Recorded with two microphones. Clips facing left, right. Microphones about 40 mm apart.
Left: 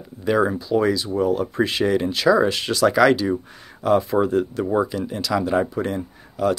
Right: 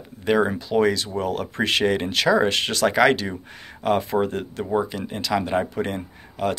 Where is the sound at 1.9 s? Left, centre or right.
Right.